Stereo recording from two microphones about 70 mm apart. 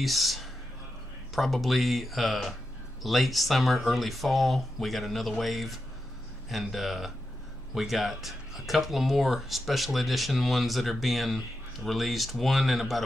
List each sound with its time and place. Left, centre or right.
0.0 s speech: centre